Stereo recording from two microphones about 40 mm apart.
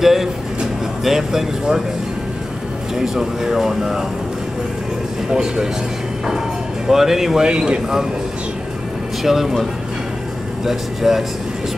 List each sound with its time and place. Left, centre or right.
0.0 s speech: centre
3.0 s speech: centre
5.3 s speech: centre
6.9 s speech: centre
7.4 s speech: right
9.2 s speech: centre